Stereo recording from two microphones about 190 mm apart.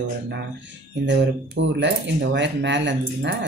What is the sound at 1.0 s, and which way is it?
Speech, 70° right (ahead or behind).